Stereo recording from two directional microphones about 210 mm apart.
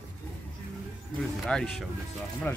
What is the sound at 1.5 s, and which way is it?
Speech, centre (ahead or behind).